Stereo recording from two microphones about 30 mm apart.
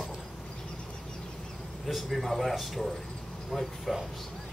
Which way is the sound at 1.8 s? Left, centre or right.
Centre.